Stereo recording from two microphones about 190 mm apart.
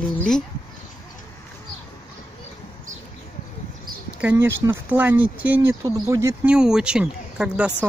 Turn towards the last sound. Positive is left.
turn(degrees=-5)  # may be behind; listen again after turning